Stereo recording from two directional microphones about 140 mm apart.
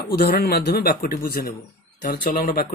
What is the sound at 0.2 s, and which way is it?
A man's voice, 90° left.